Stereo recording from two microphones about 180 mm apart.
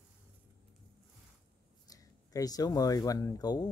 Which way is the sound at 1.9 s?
20° left (ahead or behind).